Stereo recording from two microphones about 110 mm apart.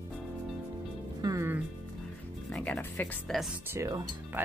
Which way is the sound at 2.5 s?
10° left (ahead or behind).